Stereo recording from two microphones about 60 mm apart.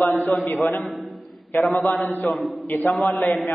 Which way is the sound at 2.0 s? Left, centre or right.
Left.